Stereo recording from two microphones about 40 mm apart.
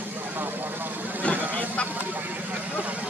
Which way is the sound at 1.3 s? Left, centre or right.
Right.